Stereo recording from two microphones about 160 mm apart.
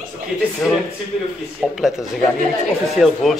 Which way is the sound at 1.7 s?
Centre (ahead or behind).